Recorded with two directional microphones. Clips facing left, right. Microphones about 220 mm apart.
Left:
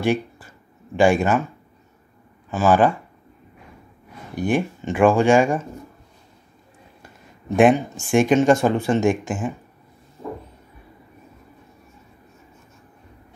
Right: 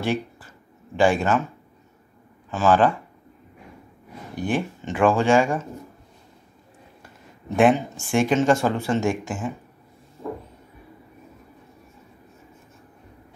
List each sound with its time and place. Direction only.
0.0 s a sound: 15° left (ahead or behind)
0.9 s speech: 15° left (ahead or behind)
2.5 s speech: 10° left (ahead or behind)
4.4 s speech: 15° left (ahead or behind)
7.4 s speech: 15° left (ahead or behind)